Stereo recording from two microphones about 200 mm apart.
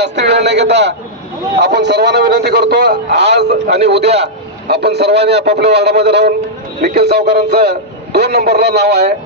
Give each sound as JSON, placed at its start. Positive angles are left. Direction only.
{"t": 0.0, "sound": "a man's voice", "side_deg": -55}
{"t": 3.8, "sound": "a man's voice", "side_deg": -30}
{"t": 4.2, "sound": "a man's voice", "side_deg": -55}